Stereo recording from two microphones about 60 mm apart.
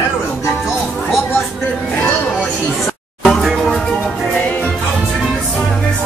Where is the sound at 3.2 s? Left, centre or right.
Centre.